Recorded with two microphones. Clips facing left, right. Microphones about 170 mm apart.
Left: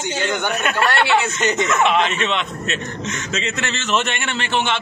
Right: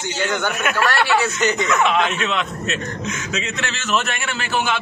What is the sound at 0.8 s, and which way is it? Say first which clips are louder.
Speech: left 1 dB; 20° left (ahead or behind).